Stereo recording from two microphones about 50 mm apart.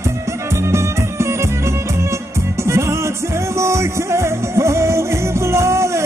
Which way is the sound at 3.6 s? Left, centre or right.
Right.